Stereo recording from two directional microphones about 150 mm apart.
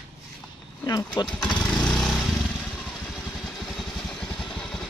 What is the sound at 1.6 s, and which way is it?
Vehicle, 5° left (ahead or behind).